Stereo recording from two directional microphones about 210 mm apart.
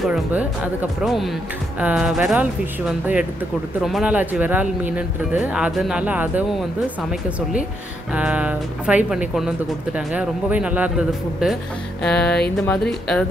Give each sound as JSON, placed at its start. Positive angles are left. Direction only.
{"t": 0.0, "sound": "speech", "side_deg": -5}
{"t": 3.8, "sound": "speech", "side_deg": -5}